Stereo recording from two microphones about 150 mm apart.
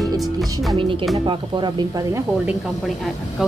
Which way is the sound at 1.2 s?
30° right (ahead or behind).